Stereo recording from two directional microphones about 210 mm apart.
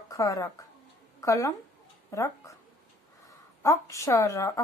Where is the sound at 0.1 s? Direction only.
15° left (ahead or behind).